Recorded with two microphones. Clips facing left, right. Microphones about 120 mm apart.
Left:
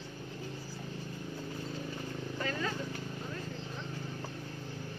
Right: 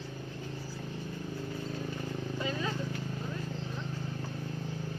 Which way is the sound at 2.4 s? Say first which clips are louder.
Even; 15° right (ahead or behind).